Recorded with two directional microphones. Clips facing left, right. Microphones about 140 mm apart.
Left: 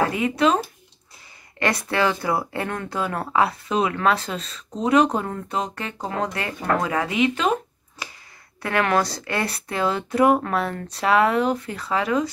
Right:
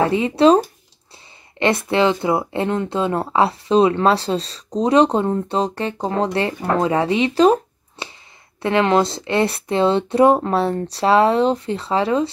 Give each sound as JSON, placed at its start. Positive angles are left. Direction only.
{"t": 0.0, "sound": "speech", "side_deg": -30}
{"t": 1.6, "sound": "speech", "side_deg": -25}
{"t": 8.6, "sound": "speech", "side_deg": -20}